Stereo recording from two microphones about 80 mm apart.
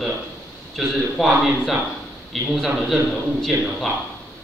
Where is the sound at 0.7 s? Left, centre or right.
Centre.